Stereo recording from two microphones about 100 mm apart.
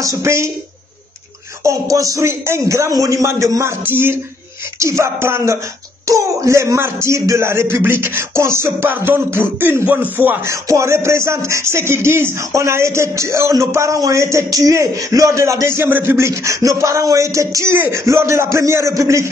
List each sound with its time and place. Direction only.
0.0 s speech: 30° right (ahead or behind)
1.6 s speech: 30° right (ahead or behind)